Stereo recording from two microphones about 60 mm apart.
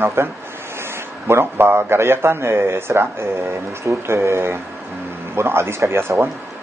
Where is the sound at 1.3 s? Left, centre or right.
Right.